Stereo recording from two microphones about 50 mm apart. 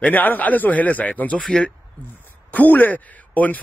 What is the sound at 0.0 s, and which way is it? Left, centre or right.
A man's voice, left.